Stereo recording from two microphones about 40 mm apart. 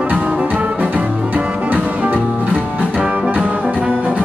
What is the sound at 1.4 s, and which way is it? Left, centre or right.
Music, right.